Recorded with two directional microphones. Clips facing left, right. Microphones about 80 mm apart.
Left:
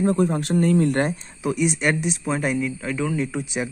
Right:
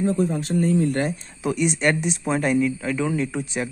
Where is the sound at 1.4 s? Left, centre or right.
Centre.